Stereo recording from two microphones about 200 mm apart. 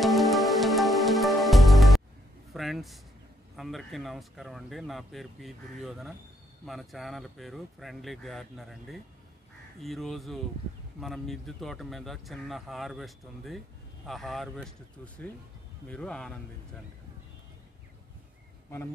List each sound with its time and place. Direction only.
0.0 s music: centre (ahead or behind)
2.5 s a sound: centre (ahead or behind)
3.5 s speech: centre (ahead or behind)
15.9 s speech: 5° left (ahead or behind)